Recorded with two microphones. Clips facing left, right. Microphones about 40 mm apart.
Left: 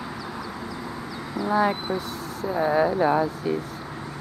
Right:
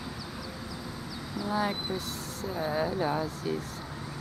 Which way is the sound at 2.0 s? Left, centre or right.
Centre.